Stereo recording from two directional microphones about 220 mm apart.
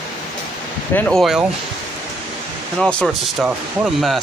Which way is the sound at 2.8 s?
Centre (ahead or behind).